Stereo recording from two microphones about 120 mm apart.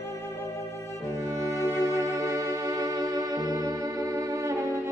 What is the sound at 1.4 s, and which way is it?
Music, 25° right (ahead or behind).